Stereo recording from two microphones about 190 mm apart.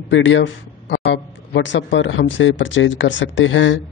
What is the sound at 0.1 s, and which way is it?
Speech, 80° left.